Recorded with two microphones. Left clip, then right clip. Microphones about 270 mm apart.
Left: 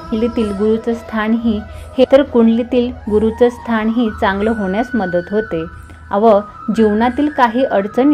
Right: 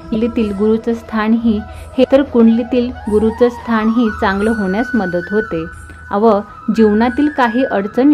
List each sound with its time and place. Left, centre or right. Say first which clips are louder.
0.2 s a woman's voice: even; centre
1.4 s a woman's voice: right 2 dB; right
2.0 s a woman's voice: even; centre